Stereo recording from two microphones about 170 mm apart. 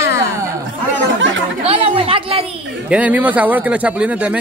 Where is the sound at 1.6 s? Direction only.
35° right (ahead or behind).